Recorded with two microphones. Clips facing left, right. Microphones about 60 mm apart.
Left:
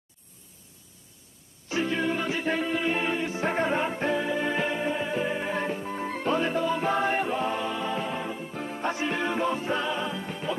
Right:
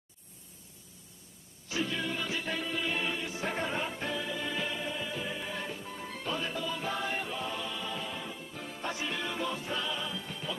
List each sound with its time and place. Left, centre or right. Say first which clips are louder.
1.7 s music: left 7 dB; left